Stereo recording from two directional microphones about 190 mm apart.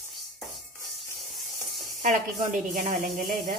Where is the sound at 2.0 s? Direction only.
40° right (ahead or behind).